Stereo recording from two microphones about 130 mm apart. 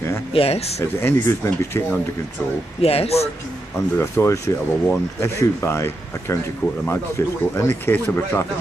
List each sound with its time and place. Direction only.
0.3 s speech: 50° left (ahead or behind)
0.7 s speech: 20° left (ahead or behind)
2.8 s speech: 50° left (ahead or behind)
3.7 s speech: 20° left (ahead or behind)